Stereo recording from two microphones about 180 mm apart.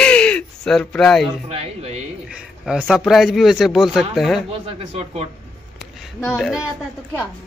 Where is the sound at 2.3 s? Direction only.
5° right (ahead or behind).